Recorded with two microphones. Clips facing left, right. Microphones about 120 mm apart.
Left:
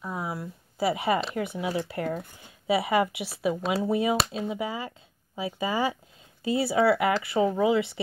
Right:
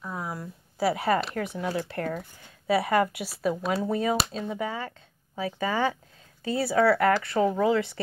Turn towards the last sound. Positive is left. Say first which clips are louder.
# even
turn(degrees=5)  # may be behind; listen again after turning